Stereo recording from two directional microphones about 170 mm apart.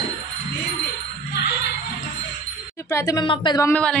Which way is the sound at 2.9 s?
15° left (ahead or behind).